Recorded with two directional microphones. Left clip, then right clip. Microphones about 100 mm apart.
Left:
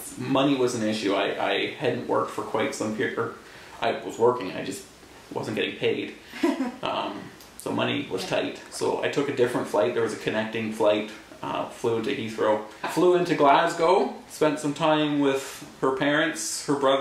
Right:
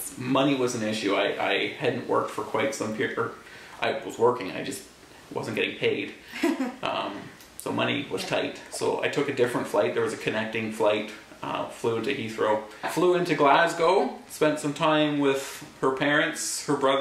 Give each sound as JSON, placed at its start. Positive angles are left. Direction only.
{"t": 0.2, "sound": "speech", "side_deg": -5}
{"t": 6.4, "sound": "a sound", "side_deg": -15}
{"t": 6.8, "sound": "speech", "side_deg": -5}